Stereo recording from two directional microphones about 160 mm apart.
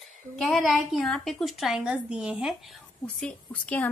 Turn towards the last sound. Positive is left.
turn(degrees=10)  # may be behind; listen again after turning